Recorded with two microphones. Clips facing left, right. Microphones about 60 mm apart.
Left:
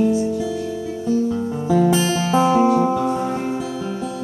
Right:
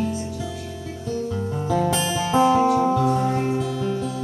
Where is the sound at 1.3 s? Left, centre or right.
Centre.